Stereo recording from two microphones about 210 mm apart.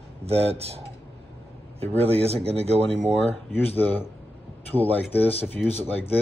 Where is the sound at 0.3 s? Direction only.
30° right (ahead or behind).